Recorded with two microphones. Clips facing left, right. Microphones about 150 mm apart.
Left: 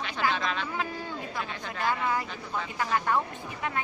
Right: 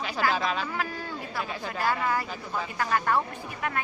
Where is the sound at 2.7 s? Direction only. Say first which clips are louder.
Right 1 dB; 15° left (ahead or behind).